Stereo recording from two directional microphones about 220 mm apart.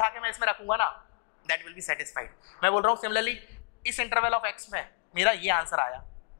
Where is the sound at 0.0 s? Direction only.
15° left (ahead or behind).